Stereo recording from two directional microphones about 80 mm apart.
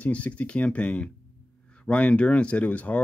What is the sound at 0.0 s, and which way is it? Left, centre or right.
Speech, centre.